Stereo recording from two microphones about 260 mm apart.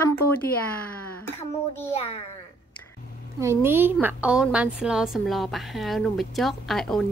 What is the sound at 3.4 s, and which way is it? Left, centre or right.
A woman's voice, centre.